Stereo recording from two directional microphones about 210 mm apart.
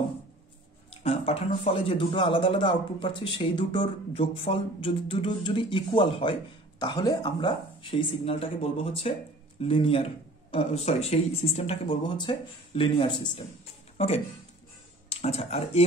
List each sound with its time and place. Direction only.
0.8 s a man's voice: 30° left (ahead or behind)